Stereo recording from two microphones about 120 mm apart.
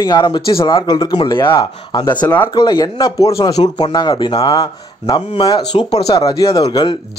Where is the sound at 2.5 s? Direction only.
35° left (ahead or behind).